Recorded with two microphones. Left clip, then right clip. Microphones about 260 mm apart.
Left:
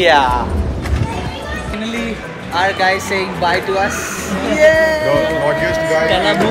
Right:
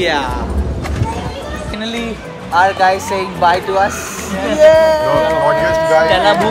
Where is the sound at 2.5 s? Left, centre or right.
Centre.